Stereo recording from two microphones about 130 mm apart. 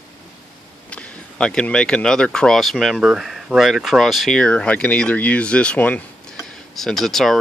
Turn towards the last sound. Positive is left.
turn(degrees=0)  # may be behind; listen again after turning